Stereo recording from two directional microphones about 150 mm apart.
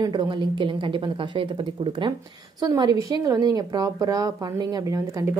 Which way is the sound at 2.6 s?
25° right (ahead or behind).